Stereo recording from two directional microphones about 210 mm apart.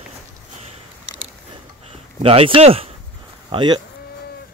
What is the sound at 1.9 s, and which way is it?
Speech, 25° right (ahead or behind).